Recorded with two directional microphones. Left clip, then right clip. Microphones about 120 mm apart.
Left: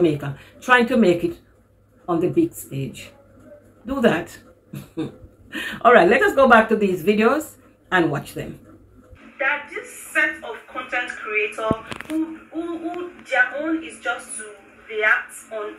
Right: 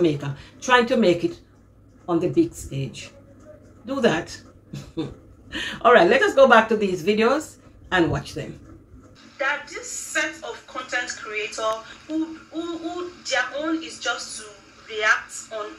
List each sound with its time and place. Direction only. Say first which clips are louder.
0.0 s speech: left 2 dB; 25° right (ahead or behind)
5.5 s speech: left 2 dB; 30° right (ahead or behind)
8.4 s speech: left 1 dB; 20° right (ahead or behind)
9.4 s a woman's voice: left 2 dB; 10° right (ahead or behind)